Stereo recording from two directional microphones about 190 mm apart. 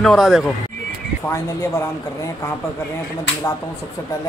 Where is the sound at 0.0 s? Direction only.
Centre (ahead or behind).